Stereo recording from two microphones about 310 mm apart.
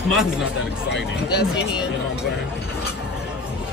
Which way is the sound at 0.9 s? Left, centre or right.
Left.